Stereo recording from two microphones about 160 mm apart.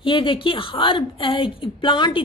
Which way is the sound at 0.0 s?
30° left (ahead or behind).